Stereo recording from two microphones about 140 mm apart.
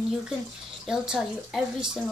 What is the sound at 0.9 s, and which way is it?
A woman's voice, 5° right (ahead or behind).